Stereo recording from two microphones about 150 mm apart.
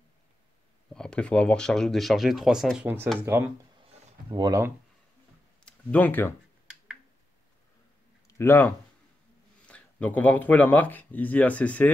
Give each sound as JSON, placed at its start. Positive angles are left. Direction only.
{"t": 0.9, "sound": "speech", "side_deg": 5}
{"t": 3.3, "sound": "speech", "side_deg": -15}
{"t": 4.3, "sound": "speech", "side_deg": -25}
{"t": 5.7, "sound": "speech", "side_deg": 10}
{"t": 8.4, "sound": "speech", "side_deg": 15}